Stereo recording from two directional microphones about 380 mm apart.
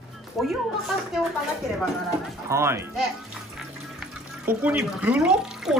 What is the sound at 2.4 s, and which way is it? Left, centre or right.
Speech, centre.